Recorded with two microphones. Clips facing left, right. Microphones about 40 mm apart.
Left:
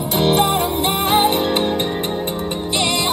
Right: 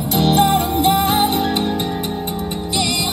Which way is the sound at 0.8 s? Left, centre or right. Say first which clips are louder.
Even; left.